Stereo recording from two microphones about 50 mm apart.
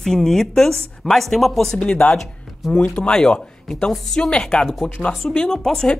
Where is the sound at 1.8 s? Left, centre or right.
Left.